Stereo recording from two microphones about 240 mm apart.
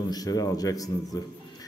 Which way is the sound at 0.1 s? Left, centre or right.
Centre.